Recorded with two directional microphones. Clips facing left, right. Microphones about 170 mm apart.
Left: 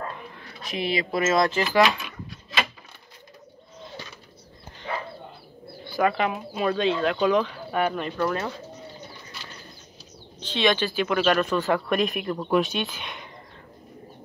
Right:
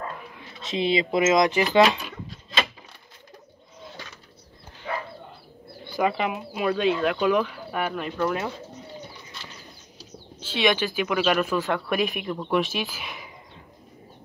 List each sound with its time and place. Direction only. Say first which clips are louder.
0.4 s speech: right 4 dB; 25° right (ahead or behind)
5.9 s bird: left 1 dB; 15° right (ahead or behind)
6.1 s speech: left 1 dB; 10° right (ahead or behind)
10.4 s speech: even; 10° right (ahead or behind)